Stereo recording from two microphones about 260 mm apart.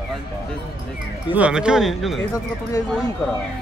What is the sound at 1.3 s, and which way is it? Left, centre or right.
Speech, centre.